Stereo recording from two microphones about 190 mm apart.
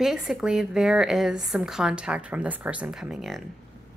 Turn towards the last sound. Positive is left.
turn(degrees=0)  # may be behind; listen again after turning